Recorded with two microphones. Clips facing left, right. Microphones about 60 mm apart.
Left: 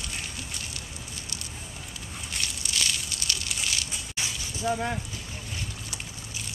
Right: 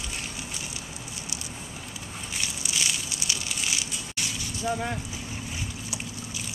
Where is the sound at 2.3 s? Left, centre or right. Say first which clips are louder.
Even; centre.